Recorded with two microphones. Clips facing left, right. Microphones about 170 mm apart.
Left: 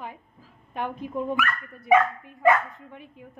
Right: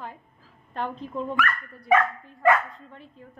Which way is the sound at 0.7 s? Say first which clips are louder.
Left 1 dB; 15° left (ahead or behind).